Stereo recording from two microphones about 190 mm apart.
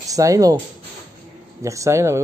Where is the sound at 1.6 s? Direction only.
15° right (ahead or behind).